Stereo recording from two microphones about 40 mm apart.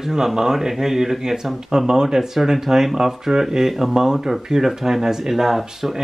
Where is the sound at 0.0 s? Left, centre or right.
Centre.